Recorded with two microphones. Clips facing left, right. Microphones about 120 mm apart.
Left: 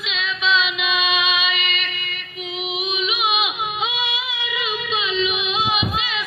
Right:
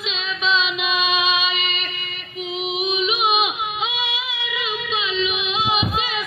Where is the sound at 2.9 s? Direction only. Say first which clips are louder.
Right 2 dB; 35° right (ahead or behind).